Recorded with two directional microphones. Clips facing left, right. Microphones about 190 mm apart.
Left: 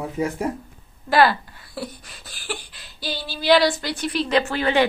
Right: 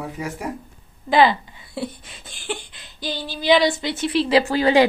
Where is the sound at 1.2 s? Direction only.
20° right (ahead or behind).